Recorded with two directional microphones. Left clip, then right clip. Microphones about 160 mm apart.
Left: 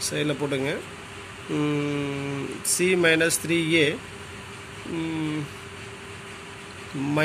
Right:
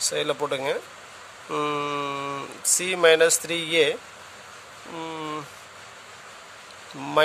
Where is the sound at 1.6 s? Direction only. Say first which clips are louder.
Right 1 dB; 70° right (ahead or behind).